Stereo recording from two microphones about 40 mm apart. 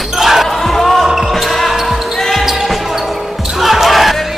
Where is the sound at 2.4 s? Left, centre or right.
Centre.